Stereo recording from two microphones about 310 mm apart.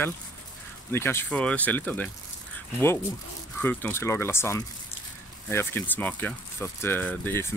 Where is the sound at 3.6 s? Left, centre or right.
Centre.